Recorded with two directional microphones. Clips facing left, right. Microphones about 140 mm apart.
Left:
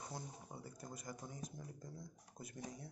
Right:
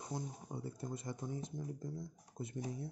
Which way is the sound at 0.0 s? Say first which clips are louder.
Right 6 dB; 25° right (ahead or behind).